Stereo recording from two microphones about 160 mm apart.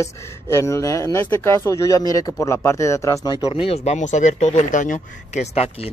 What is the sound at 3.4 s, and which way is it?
Speech, 40° left (ahead or behind).